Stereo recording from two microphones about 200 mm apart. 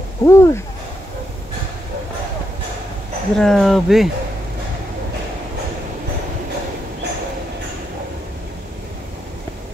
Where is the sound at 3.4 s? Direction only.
Centre (ahead or behind).